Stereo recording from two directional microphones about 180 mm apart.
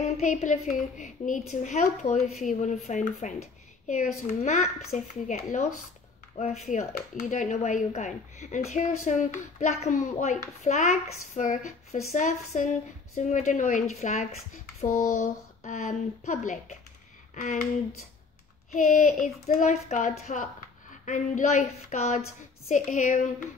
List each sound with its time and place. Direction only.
0.0 s a woman's voice: 40° left (ahead or behind)
18.7 s speech: 45° left (ahead or behind)